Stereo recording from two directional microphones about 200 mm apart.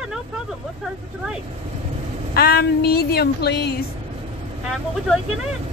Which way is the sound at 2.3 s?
50° left (ahead or behind).